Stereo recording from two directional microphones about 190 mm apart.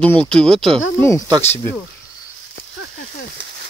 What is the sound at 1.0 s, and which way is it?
Speech, 15° left (ahead or behind).